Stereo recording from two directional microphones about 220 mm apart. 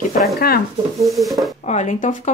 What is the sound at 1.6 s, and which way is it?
Speech, 30° left (ahead or behind).